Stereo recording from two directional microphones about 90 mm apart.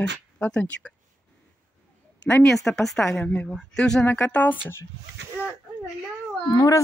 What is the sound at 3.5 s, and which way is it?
Speech, 5° left (ahead or behind).